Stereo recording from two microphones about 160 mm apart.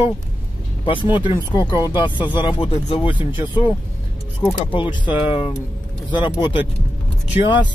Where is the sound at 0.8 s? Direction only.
30° left (ahead or behind).